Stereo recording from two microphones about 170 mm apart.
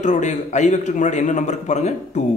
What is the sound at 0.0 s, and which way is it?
A man's voice, 45° left (ahead or behind).